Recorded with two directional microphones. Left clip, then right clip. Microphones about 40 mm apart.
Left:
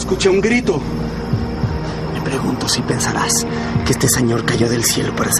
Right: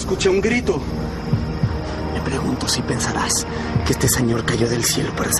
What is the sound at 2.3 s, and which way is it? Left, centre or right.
Speech, centre.